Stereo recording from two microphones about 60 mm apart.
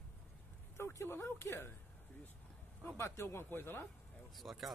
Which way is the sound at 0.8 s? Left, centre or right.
Left.